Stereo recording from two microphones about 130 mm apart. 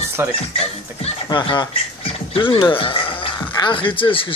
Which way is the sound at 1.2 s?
35° left (ahead or behind).